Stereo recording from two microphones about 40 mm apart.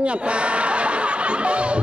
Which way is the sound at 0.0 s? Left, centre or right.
Right.